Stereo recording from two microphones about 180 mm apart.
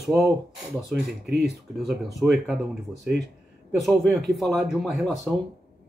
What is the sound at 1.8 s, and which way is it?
Speech, centre (ahead or behind).